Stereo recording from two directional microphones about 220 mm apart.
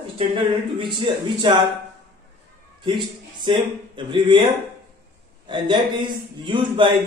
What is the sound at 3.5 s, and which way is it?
Speech, 20° right (ahead or behind).